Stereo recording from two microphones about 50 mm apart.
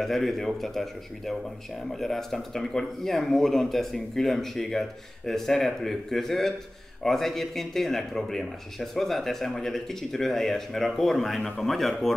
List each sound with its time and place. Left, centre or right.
0.0 s a man's voice: centre